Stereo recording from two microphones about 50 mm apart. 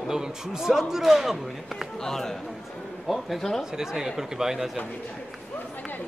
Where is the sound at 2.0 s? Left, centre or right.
Centre.